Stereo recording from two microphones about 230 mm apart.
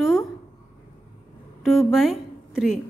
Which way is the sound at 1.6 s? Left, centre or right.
Centre.